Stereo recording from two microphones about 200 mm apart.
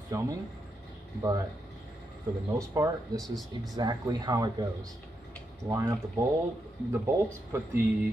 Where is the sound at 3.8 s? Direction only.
20° right (ahead or behind).